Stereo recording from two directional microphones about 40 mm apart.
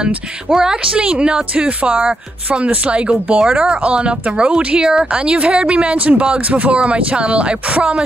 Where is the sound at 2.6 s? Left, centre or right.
Right.